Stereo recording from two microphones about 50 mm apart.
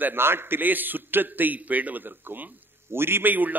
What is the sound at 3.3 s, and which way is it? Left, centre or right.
Speech, right.